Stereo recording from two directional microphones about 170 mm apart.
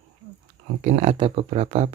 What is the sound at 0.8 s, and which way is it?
Speech, 45° right (ahead or behind).